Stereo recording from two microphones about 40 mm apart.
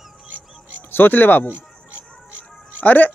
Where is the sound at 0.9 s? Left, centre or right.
Left.